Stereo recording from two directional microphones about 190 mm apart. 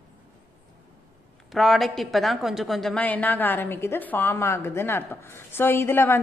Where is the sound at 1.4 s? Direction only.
Centre (ahead or behind).